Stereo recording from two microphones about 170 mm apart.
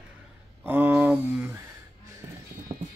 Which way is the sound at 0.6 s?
10° right (ahead or behind).